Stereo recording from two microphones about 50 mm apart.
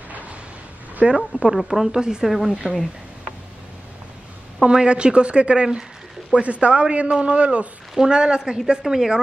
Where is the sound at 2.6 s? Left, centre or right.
Left.